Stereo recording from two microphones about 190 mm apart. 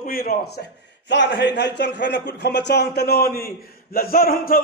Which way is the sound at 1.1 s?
65° left (ahead or behind).